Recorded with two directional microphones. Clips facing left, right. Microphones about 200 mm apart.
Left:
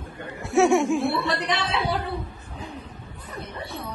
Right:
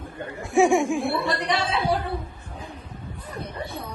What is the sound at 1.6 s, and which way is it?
Speech, 50° right (ahead or behind).